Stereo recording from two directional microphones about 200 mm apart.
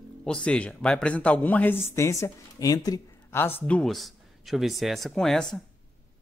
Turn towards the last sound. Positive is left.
turn(degrees=0)  # may be behind; listen again after turning